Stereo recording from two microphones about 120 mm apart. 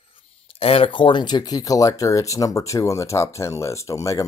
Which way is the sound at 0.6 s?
50° left (ahead or behind).